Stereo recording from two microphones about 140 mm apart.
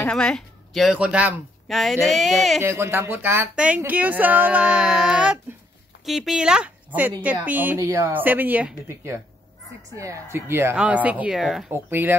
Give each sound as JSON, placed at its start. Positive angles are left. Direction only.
{"t": 0.0, "sound": "speech", "side_deg": 5}
{"t": 2.6, "sound": "speech", "side_deg": -15}
{"t": 7.8, "sound": "speech", "side_deg": -20}
{"t": 11.7, "sound": "speech", "side_deg": -15}